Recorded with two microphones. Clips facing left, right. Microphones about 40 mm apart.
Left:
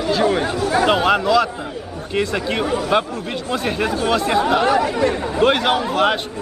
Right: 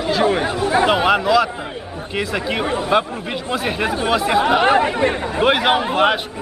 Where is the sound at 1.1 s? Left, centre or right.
Centre.